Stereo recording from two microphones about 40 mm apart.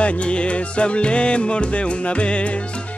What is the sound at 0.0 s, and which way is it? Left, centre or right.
Music, left.